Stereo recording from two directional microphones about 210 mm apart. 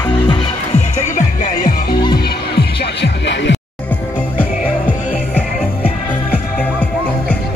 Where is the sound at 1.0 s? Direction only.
35° left (ahead or behind); by 3.5 s 55° left (ahead or behind).